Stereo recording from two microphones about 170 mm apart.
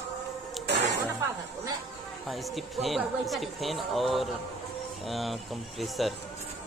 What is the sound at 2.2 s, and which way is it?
A woman's voice, centre (ahead or behind).